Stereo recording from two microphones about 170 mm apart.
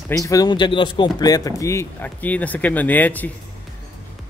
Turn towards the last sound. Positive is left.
turn(degrees=10)  # may be behind; listen again after turning